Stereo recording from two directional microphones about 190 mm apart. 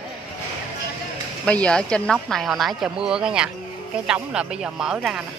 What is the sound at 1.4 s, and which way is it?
Speech, 5° left (ahead or behind).